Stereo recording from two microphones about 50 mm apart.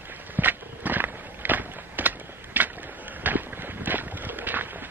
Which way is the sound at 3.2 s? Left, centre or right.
Right.